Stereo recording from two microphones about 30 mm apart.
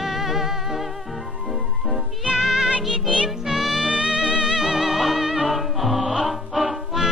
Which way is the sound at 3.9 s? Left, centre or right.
Right.